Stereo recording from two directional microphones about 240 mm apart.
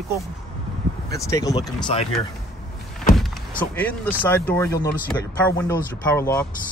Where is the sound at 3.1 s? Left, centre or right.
Centre.